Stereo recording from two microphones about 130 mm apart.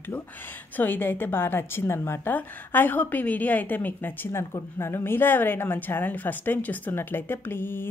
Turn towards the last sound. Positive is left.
turn(degrees=15)  # may be behind; listen again after turning